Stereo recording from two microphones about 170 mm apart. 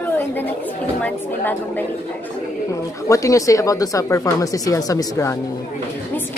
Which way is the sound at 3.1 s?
20° left (ahead or behind).